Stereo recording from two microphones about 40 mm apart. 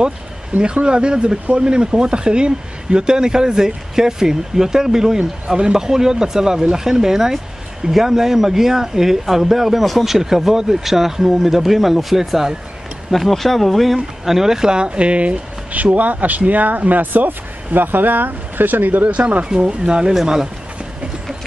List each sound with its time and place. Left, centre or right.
0.5 s speech: right
0.8 s speech: right
13.1 s speech: centre
13.9 s speech: centre; by 19.0 s right
19.0 s speech: right
19.5 s speech: right
20.2 s speech: centre